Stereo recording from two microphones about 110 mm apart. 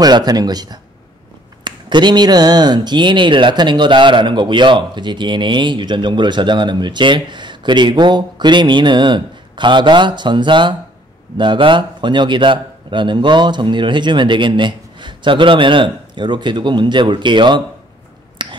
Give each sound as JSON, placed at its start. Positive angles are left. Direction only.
{"t": 0.0, "sound": "a man's voice", "side_deg": -40}
{"t": 18.4, "sound": "finger snapping", "side_deg": -45}